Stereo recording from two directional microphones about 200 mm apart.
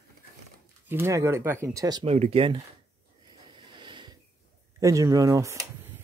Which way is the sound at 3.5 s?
25° right (ahead or behind).